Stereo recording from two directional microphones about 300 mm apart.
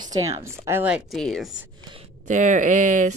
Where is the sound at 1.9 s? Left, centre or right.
Right.